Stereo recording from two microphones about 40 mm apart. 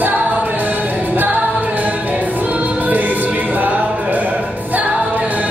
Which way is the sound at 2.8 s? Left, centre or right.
Right.